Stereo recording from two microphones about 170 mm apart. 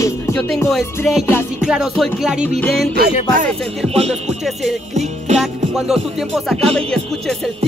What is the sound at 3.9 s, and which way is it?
Speech, 40° right (ahead or behind).